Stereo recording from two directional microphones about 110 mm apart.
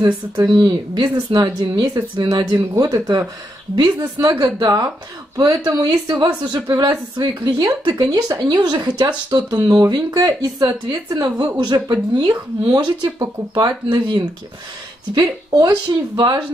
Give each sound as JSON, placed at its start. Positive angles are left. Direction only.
{"t": 0.5, "sound": "a woman's voice", "side_deg": -45}
{"t": 2.7, "sound": "speech", "side_deg": -30}
{"t": 3.7, "sound": "a woman's voice", "side_deg": -40}